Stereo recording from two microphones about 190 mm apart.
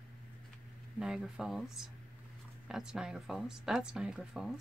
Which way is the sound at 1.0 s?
5° right (ahead or behind).